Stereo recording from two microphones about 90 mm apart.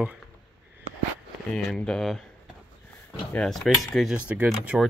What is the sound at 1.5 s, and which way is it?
Speech, 10° left (ahead or behind).